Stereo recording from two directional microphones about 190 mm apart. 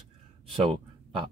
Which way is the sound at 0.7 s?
25° right (ahead or behind).